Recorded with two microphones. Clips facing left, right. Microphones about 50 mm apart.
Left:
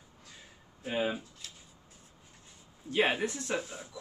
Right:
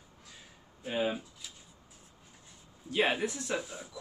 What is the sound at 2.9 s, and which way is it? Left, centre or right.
Speech, centre.